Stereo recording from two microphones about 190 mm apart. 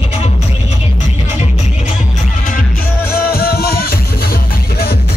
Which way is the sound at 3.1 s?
50° left (ahead or behind).